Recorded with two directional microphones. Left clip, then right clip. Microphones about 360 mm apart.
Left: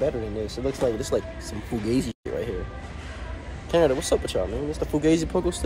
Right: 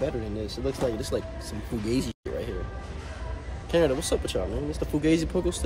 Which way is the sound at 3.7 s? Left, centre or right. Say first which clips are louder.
Left 3 dB; centre.